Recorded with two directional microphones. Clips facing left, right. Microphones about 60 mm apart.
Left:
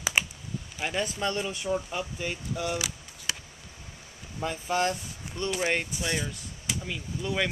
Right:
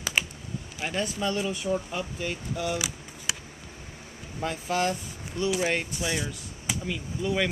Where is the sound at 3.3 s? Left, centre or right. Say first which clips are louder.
Even; centre.